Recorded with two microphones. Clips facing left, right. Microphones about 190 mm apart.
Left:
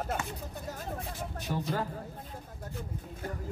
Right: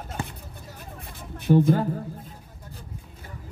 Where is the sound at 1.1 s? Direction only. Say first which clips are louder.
Right 13 dB; 60° right (ahead or behind).